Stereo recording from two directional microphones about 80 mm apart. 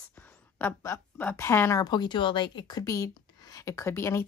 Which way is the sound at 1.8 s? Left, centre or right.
Left.